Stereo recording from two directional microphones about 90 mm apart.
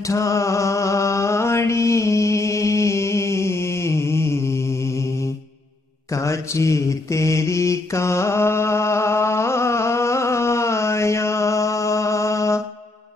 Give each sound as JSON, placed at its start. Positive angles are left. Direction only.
{"t": 0.0, "sound": "music", "side_deg": 35}
{"t": 6.1, "sound": "mantra", "side_deg": 35}